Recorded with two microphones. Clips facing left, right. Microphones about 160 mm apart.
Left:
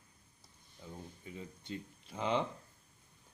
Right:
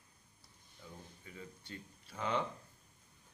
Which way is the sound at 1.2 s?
20° left (ahead or behind).